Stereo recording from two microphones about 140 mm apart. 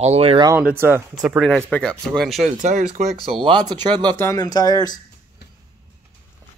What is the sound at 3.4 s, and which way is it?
Speech, 30° right (ahead or behind).